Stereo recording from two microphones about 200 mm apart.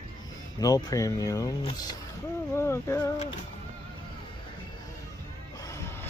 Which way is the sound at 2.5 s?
10° left (ahead or behind).